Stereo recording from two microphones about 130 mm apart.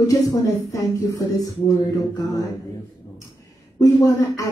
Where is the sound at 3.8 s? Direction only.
25° left (ahead or behind).